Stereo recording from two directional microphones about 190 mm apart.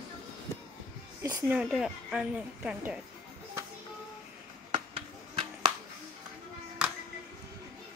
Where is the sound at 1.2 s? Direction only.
20° right (ahead or behind).